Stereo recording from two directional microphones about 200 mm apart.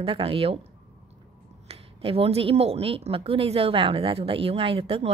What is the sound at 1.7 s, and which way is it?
Speech, 30° right (ahead or behind).